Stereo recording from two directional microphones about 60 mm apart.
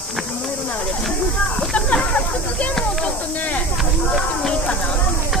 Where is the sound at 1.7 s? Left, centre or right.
Left.